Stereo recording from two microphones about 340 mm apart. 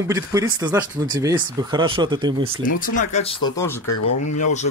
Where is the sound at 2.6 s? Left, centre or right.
Left.